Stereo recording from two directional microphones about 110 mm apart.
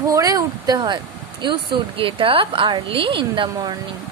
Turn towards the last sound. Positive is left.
turn(degrees=-50)  # may be behind; listen again after turning